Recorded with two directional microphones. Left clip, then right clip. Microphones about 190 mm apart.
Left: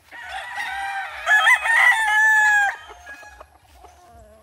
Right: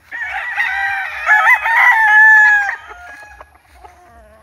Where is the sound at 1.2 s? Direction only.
50° left (ahead or behind).